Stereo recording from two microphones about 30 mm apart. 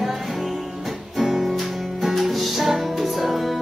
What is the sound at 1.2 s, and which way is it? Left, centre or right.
Music, centre.